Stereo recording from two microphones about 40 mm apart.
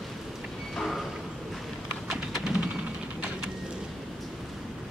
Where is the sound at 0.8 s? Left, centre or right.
Centre.